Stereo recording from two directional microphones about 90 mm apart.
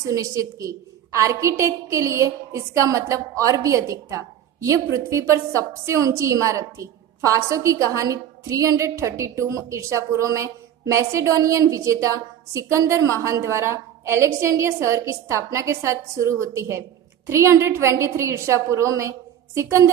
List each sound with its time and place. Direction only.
0.0 s a woman's voice: 35° right (ahead or behind)